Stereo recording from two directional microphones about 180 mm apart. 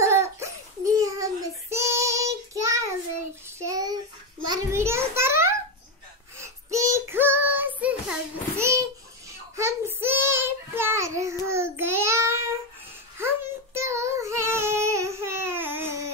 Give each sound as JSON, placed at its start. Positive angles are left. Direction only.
{"t": 0.0, "sound": "a sound", "side_deg": -15}
{"t": 6.3, "sound": "child singing", "side_deg": -15}
{"t": 13.7, "sound": "child singing", "side_deg": -15}